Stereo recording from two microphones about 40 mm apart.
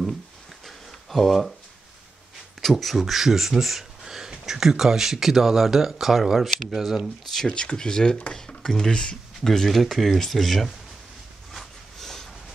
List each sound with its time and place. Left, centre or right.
0.7 s a sound: centre
2.6 s speech: centre
7.3 s speech: left; by 10.7 s centre
11.5 s snort: centre